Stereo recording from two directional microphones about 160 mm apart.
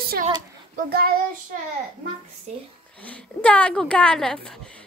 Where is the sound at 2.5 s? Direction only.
45° right (ahead or behind).